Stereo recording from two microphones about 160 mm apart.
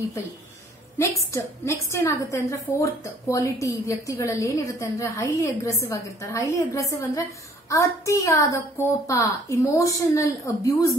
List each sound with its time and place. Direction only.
1.3 s a woman's voice: 20° left (ahead or behind)